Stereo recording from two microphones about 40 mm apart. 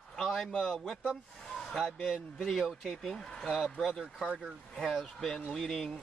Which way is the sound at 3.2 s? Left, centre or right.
Centre.